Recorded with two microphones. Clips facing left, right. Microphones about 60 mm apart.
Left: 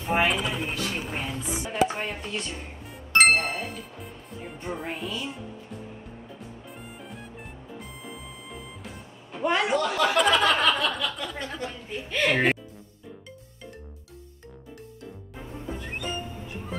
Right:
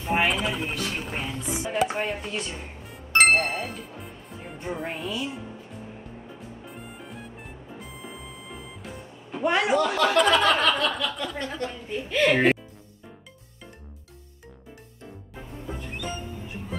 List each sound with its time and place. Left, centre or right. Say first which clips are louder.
0.0 s speech: even; centre
7.8 s speech: right 1 dB; centre